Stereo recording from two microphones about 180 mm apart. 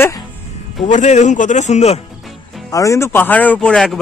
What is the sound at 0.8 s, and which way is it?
Speech, 45° left (ahead or behind).